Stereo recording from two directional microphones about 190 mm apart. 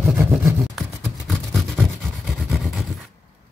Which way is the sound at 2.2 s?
Centre (ahead or behind).